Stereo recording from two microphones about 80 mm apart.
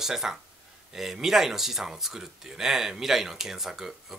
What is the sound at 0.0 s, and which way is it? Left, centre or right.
Speech, centre.